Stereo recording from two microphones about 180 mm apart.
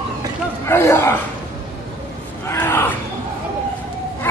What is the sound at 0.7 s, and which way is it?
Speech, 15° left (ahead or behind).